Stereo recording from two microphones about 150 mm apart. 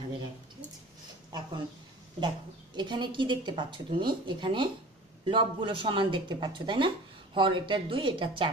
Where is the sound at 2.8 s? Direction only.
30° right (ahead or behind).